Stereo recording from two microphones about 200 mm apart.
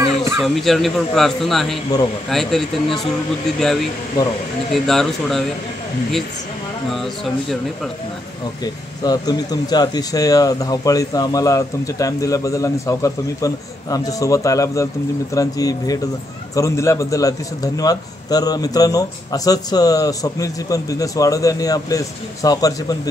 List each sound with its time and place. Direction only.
0.0 s a sound: 15° right (ahead or behind)
0.4 s speech: centre (ahead or behind)
4.8 s speech: centre (ahead or behind)
6.9 s speech: centre (ahead or behind)
9.0 s a man's voice: 20° left (ahead or behind)